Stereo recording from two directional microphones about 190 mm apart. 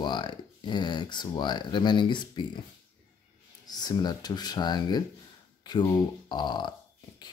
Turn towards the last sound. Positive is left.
turn(degrees=25)  # may be behind; listen again after turning